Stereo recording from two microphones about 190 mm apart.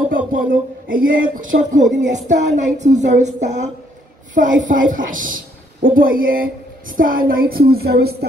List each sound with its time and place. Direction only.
0.3 s a woman's voice: 45° right (ahead or behind)
2.0 s a sound: 40° right (ahead or behind)
4.6 s a woman's voice: 45° right (ahead or behind)